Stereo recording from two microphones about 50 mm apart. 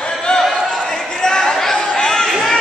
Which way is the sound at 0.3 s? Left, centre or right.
Centre.